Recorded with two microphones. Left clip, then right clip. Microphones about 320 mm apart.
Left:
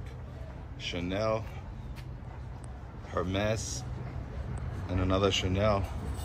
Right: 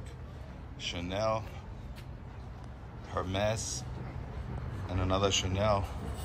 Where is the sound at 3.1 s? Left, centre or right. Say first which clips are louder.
Left 1 dB; centre.